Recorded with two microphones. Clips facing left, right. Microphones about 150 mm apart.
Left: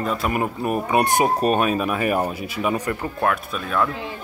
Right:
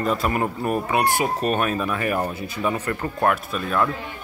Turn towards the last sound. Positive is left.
turn(degrees=0)  # may be behind; listen again after turning